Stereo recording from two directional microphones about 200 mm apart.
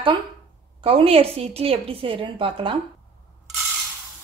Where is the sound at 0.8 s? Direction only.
25° right (ahead or behind).